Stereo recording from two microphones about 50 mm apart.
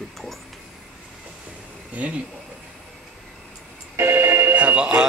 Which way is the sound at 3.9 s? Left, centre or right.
Right.